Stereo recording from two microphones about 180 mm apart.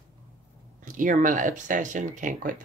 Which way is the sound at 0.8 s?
50° right (ahead or behind).